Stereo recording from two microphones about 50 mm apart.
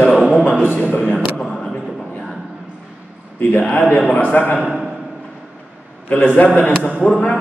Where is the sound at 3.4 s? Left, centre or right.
Left.